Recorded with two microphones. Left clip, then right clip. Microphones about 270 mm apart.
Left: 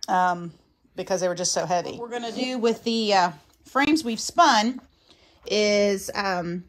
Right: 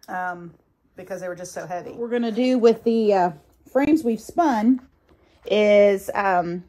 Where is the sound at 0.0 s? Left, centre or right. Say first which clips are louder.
Left 7 dB; centre.